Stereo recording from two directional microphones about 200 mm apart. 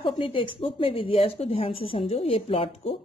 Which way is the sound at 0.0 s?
25° left (ahead or behind).